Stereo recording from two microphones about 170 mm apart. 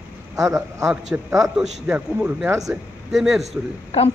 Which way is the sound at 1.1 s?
20° right (ahead or behind).